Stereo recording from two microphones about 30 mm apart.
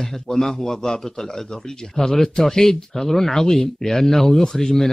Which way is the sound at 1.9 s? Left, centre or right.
Centre.